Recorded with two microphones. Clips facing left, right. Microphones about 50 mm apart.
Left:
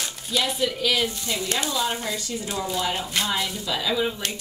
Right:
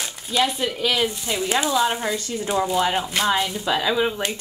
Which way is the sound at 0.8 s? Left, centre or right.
Right.